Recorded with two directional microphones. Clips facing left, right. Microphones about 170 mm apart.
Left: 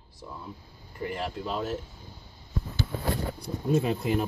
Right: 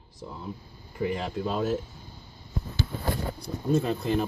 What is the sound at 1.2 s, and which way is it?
Speech, 20° right (ahead or behind).